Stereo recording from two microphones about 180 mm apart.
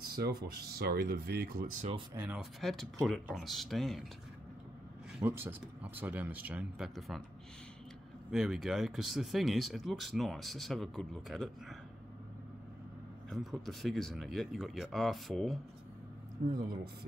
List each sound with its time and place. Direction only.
0.0 s speech: 60° right (ahead or behind)
2.1 s speech: 10° right (ahead or behind)
2.6 s speech: centre (ahead or behind)
5.2 s speech: 10° right (ahead or behind)
8.3 s speech: centre (ahead or behind)
13.3 s speech: centre (ahead or behind)
16.5 s speech: 55° right (ahead or behind)